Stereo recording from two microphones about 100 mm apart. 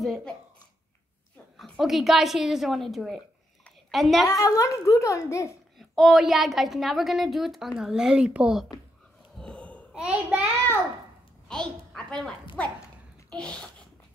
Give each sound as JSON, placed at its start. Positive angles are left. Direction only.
{"t": 0.0, "sound": "a woman's voice", "side_deg": 0}
{"t": 1.6, "sound": "a woman's voice", "side_deg": 0}
{"t": 4.3, "sound": "a woman's voice", "side_deg": 35}
{"t": 5.8, "sound": "a woman's voice", "side_deg": 0}
{"t": 9.4, "sound": "a sound", "side_deg": 10}
{"t": 9.9, "sound": "a child's voice", "side_deg": -10}
{"t": 11.4, "sound": "a woman's voice", "side_deg": 5}